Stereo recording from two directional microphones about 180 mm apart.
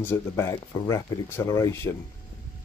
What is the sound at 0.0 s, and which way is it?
Speech, 15° left (ahead or behind).